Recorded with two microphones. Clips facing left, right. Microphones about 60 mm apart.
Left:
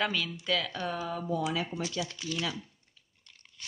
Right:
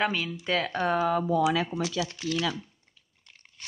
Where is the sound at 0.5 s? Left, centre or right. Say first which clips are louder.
Right 5 dB; right.